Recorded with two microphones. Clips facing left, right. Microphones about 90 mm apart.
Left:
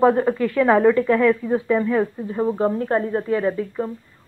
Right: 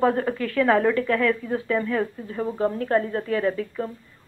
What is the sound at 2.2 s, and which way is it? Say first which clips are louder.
Speech: left 4 dB; 25° left (ahead or behind).